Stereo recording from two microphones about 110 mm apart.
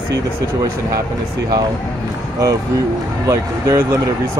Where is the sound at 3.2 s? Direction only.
30° right (ahead or behind).